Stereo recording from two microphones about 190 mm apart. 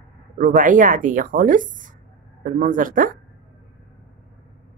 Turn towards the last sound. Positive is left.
turn(degrees=-45)  # may be behind; listen again after turning